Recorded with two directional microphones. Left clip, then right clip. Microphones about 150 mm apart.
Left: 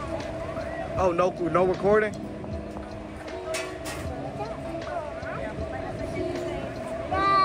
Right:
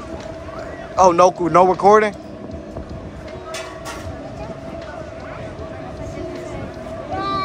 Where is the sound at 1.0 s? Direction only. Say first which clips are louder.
Right 12 dB; 40° right (ahead or behind).